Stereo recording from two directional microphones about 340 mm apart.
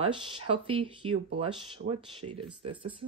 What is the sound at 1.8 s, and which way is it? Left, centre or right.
Speech, right.